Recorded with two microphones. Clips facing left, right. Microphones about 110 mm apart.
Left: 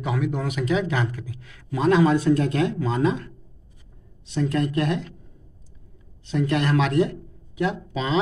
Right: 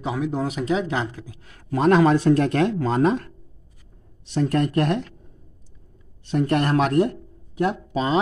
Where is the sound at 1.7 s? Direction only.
50° right (ahead or behind).